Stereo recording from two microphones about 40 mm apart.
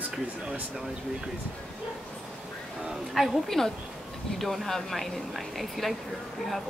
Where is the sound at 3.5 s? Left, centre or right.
Centre.